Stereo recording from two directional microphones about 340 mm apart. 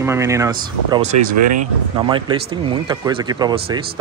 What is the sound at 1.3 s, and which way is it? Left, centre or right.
Speech, right.